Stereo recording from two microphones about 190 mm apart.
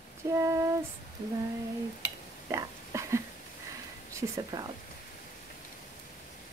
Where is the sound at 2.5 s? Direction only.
15° right (ahead or behind).